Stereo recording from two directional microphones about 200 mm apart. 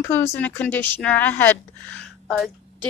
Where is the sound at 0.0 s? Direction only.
10° left (ahead or behind).